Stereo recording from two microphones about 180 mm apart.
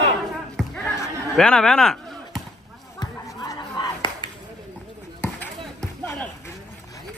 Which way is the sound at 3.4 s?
20° left (ahead or behind).